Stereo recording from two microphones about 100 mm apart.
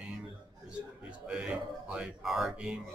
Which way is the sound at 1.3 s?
10° right (ahead or behind).